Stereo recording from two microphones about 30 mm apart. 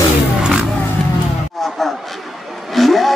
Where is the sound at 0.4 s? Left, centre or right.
Right.